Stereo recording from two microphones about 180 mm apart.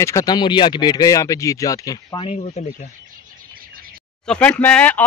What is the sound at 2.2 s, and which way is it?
Speech, 35° left (ahead or behind).